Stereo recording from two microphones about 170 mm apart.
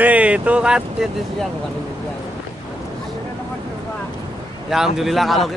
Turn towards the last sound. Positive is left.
turn(degrees=0)  # may be behind; listen again after turning